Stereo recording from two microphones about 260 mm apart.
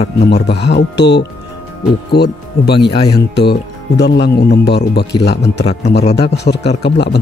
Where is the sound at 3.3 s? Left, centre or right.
Left.